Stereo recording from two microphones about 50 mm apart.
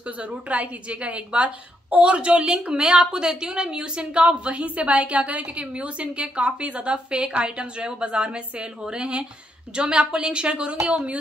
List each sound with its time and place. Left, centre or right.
0.2 s a woman's voice: right